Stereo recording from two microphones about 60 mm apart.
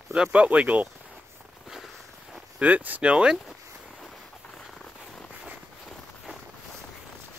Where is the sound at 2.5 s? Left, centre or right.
Right.